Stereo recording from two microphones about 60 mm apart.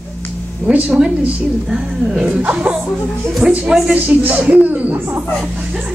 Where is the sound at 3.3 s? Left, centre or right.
Centre.